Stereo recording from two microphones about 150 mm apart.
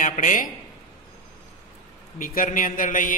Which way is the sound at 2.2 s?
65° left (ahead or behind).